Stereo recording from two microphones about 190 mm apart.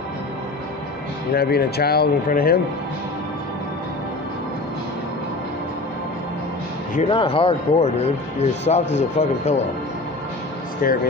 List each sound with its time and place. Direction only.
1.3 s speech: 55° left (ahead or behind)
7.0 s speech: 30° left (ahead or behind)
10.8 s speech: 50° left (ahead or behind)